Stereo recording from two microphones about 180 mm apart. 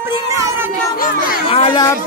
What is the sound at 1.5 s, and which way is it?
Speech, 35° left (ahead or behind).